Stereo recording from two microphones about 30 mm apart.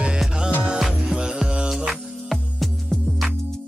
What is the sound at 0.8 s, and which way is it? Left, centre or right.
Music, centre.